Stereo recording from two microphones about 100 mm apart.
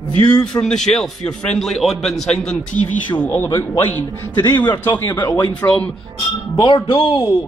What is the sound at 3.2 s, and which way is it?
A man's voice, 25° left (ahead or behind).